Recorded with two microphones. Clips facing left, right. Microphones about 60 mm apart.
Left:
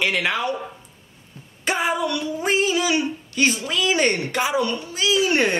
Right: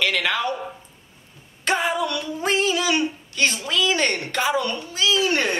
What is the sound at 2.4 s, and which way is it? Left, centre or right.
Speech, centre.